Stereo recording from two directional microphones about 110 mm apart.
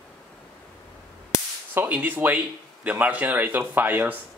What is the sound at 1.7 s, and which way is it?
Speech, 15° right (ahead or behind).